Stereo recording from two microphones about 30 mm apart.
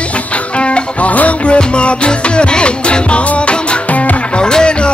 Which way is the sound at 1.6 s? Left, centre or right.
Left.